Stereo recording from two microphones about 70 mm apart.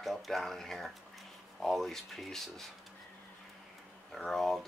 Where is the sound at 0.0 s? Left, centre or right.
Centre.